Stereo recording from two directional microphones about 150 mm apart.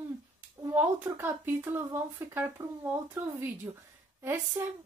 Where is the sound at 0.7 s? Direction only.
15° right (ahead or behind).